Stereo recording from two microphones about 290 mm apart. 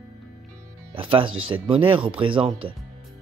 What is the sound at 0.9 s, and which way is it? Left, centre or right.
Speech, centre.